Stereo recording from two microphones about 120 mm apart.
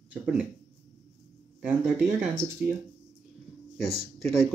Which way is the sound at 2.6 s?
10° right (ahead or behind).